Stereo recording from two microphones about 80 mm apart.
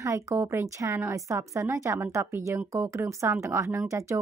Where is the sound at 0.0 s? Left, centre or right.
Right.